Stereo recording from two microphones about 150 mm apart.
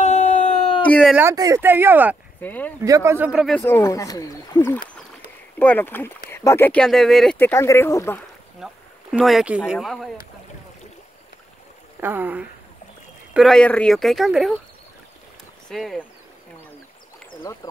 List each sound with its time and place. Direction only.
0.0 s a sound: 50° left (ahead or behind)
0.8 s speech: 10° left (ahead or behind)
1.3 s speech: 20° right (ahead or behind)
2.4 s speech: 10° left (ahead or behind)
2.8 s speech: 20° right (ahead or behind)
3.3 s speech: centre (ahead or behind)
3.6 s speech: 20° left (ahead or behind); by 7.3 s centre (ahead or behind)
7.3 s speech: 15° left (ahead or behind)
8.5 s a sound: 5° right (ahead or behind)
9.7 s speech: centre (ahead or behind)
12.0 s speech: 15° right (ahead or behind)
13.3 s speech: centre (ahead or behind)
15.7 s speech: centre (ahead or behind)